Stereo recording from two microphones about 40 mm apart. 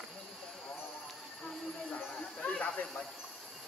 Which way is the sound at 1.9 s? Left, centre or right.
Left.